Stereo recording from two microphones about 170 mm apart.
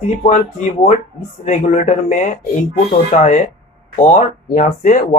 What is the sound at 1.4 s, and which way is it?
Speech, 45° left (ahead or behind).